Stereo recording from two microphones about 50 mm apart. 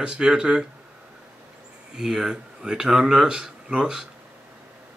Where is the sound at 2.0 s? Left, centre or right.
Centre.